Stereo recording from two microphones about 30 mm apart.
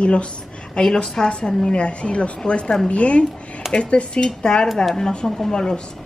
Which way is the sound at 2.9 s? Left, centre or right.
Left.